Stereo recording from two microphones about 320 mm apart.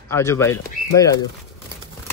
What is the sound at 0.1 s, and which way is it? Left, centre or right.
Speech, centre.